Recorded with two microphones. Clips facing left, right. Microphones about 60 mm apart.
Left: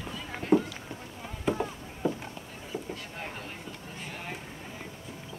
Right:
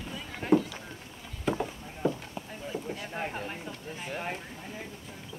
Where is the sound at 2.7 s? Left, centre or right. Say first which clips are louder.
Even; left.